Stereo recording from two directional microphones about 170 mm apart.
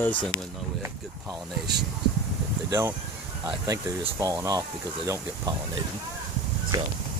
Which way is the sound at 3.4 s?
20° right (ahead or behind).